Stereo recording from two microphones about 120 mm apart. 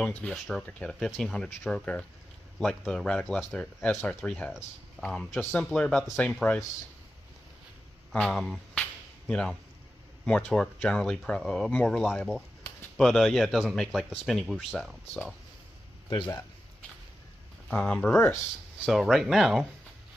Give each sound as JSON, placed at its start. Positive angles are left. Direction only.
{"t": 0.0, "sound": "speech", "side_deg": 10}
{"t": 8.1, "sound": "speech", "side_deg": 5}
{"t": 16.1, "sound": "speech", "side_deg": 40}
{"t": 17.6, "sound": "speech", "side_deg": 10}
{"t": 18.9, "sound": "speech", "side_deg": 0}